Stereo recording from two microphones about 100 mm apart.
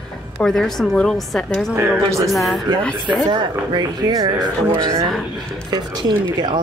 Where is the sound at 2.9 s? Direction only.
50° right (ahead or behind).